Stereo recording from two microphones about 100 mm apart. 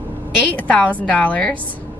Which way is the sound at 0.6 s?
15° left (ahead or behind).